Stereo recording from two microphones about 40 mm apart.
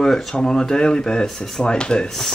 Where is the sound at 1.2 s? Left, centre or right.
Centre.